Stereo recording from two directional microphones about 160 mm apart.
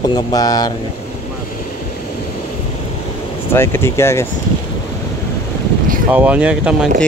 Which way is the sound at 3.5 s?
15° left (ahead or behind).